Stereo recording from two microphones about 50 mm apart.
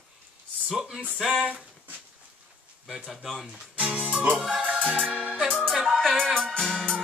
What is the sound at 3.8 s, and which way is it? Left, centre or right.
Speech, right.